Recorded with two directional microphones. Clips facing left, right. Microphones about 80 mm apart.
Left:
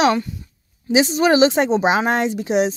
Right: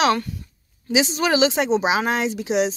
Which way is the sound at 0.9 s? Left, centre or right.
Left.